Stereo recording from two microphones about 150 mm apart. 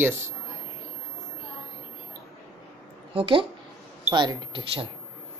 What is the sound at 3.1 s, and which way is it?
Speech, 35° right (ahead or behind).